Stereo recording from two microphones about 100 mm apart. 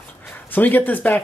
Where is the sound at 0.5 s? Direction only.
20° left (ahead or behind).